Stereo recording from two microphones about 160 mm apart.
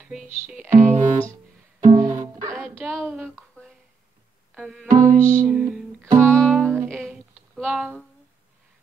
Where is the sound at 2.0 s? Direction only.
25° right (ahead or behind).